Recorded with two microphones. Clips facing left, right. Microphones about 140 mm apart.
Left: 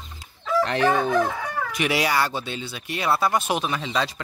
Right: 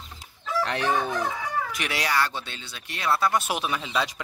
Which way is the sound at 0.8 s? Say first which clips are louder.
Left 6 dB; 60° left (ahead or behind).